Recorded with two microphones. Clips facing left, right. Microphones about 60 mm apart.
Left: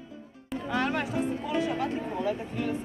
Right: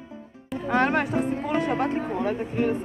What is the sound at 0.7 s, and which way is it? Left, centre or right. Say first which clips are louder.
Music: right 6 dB; right.